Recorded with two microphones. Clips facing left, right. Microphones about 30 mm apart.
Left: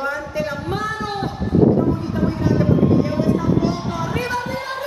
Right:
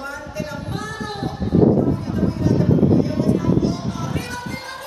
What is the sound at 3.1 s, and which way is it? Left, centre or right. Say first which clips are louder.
Music: even; left.